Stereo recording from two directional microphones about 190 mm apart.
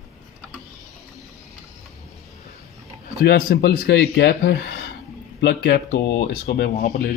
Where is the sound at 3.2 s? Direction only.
55° left (ahead or behind).